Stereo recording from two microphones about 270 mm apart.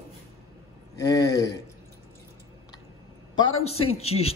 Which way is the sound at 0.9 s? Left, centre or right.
Centre.